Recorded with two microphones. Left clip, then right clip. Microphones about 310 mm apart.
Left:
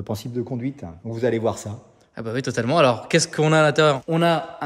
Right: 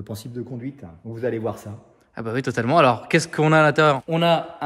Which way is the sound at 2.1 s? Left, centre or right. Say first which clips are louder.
Right 1 dB; centre.